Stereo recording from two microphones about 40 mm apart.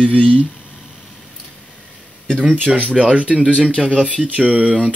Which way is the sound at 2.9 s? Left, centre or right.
Right.